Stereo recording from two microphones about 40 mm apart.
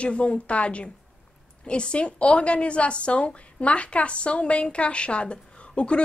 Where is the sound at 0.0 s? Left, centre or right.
Left.